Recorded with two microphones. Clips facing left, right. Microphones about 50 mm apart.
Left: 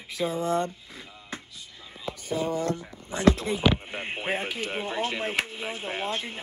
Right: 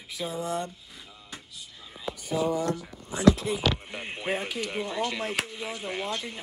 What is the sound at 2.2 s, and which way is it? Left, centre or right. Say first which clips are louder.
Speech: right 1 dB; left.